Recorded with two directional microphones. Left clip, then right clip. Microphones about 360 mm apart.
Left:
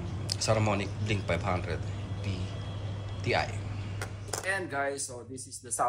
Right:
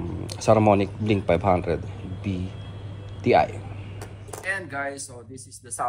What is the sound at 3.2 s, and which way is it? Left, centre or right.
Speech, centre.